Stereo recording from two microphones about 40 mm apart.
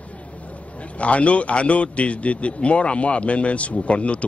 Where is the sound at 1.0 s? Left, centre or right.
Left.